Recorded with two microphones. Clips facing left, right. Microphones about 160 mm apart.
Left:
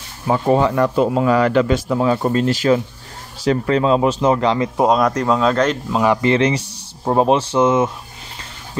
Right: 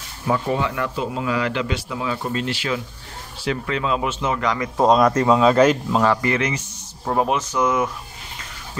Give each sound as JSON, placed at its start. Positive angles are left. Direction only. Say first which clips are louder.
{"t": 0.3, "sound": "speech", "louder": "left 6 dB", "side_deg": 40}
{"t": 4.7, "sound": "speech", "louder": "right 4 dB", "side_deg": 5}
{"t": 6.0, "sound": "speech", "louder": "left 8 dB", "side_deg": 25}